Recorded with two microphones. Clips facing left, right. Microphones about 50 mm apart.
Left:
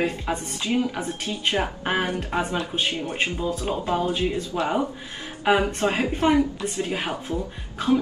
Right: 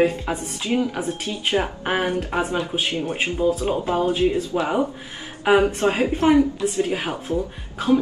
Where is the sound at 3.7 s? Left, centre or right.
Centre.